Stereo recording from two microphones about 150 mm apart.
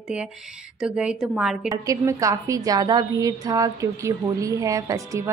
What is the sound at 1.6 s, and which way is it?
A woman's voice, 20° right (ahead or behind).